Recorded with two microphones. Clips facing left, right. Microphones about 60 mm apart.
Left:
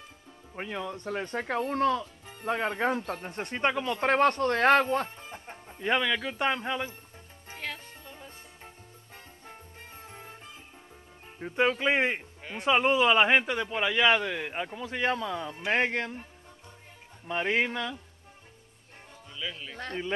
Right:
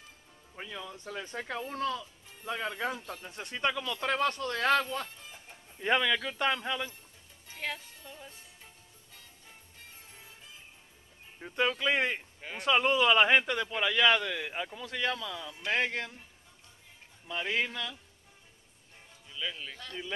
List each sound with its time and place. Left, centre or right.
0.6 s speech: left
5.8 s speech: centre
6.3 s speech: left
7.6 s music: centre
8.3 s music: left
11.3 s speech: centre
15.1 s speech: left
17.3 s speech: left
19.7 s speech: left